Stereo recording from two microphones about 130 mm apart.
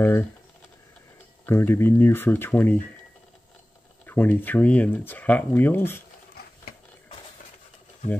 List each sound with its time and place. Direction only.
0.0 s speech: 15° left (ahead or behind)
1.4 s speech: 20° left (ahead or behind)
4.0 s speech: 15° left (ahead or behind)